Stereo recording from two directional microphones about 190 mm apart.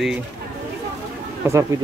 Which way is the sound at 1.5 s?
15° right (ahead or behind).